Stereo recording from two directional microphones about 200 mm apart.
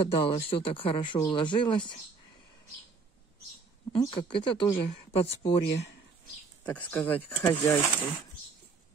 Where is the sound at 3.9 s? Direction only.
25° left (ahead or behind).